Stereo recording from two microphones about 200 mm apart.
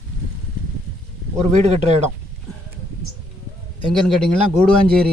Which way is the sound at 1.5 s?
35° right (ahead or behind).